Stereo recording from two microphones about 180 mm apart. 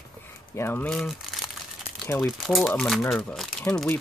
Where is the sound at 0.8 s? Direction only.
Centre (ahead or behind).